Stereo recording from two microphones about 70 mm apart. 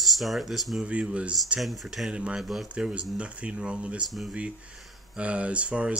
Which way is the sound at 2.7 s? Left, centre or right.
Centre.